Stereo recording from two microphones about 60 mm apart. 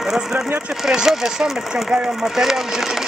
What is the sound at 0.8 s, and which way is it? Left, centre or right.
Speech, centre.